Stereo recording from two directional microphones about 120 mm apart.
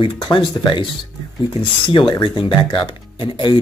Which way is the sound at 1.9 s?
40° left (ahead or behind).